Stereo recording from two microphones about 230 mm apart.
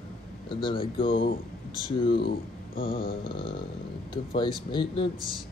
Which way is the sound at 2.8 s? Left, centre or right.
Left.